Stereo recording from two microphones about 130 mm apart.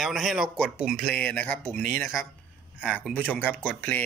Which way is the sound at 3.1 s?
15° left (ahead or behind).